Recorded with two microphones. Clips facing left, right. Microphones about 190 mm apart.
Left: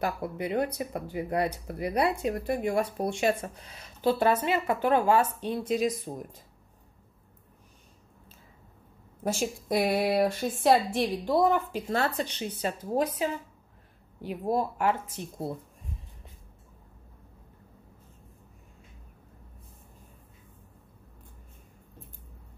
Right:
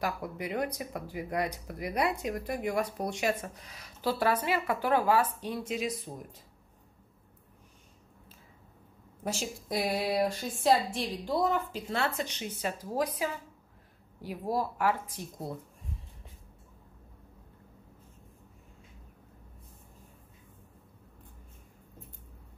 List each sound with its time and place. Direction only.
0.0 s speech: 30° left (ahead or behind)
9.2 s a woman's voice: 50° left (ahead or behind); by 15.5 s 25° left (ahead or behind)